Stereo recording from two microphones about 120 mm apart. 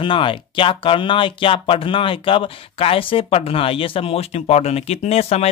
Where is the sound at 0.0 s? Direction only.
45° left (ahead or behind).